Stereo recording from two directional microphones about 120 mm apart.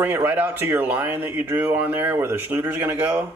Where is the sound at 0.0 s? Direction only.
15° right (ahead or behind).